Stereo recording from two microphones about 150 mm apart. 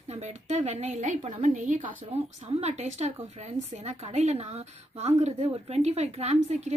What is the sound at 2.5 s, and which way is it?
A woman's voice, 45° right (ahead or behind).